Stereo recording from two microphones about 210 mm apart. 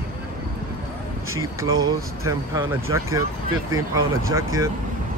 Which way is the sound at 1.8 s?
15° right (ahead or behind).